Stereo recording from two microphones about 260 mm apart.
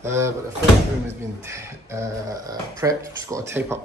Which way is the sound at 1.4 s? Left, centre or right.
Centre.